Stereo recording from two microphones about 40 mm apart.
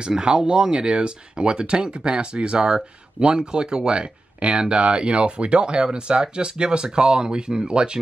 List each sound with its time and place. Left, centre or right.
0.0 s speech: right